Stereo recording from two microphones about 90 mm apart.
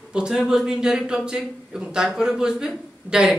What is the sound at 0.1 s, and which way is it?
Speech, 10° right (ahead or behind).